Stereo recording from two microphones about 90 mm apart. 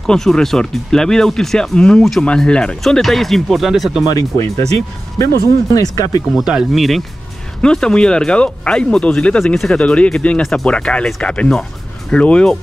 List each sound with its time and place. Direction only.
0.0 s speech: 5° left (ahead or behind)
4.1 s speech: 40° left (ahead or behind)
5.7 s speech: 45° left (ahead or behind)
6.3 s speech: 5° right (ahead or behind); by 12.5 s 10° left (ahead or behind)